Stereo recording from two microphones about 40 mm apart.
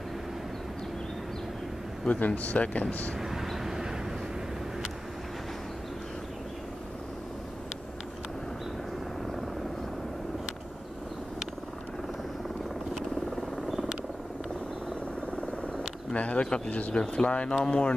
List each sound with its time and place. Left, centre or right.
2.0 s speech: left
3.2 s vehicle: centre
13.7 s vehicle: centre
16.1 s a sound: left
16.4 s speech: left